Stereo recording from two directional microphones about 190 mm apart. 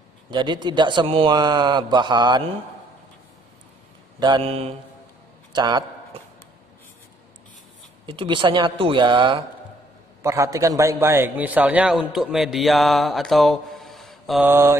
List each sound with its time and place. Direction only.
0.3 s speech: 25° right (ahead or behind)
4.2 s a man's voice: 25° right (ahead or behind)
8.1 s a man's voice: 25° right (ahead or behind); by 14.4 s centre (ahead or behind)
14.4 s mantra: 10° right (ahead or behind)